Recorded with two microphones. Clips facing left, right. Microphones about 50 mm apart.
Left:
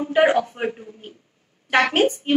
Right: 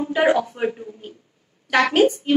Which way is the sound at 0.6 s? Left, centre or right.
Left.